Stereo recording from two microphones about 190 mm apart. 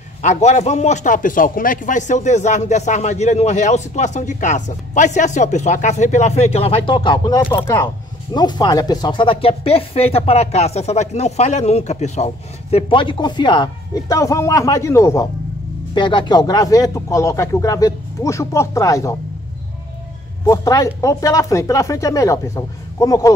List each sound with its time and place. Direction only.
0.2 s a man's voice: 35° left (ahead or behind)
12.7 s speech: 25° left (ahead or behind)
20.4 s speech: 15° left (ahead or behind)